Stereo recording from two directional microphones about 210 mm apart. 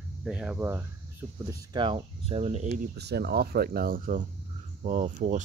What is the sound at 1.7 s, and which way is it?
Speech, 20° right (ahead or behind).